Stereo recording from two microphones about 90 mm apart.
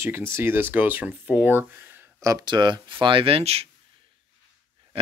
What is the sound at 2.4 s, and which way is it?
Speech, 55° right (ahead or behind).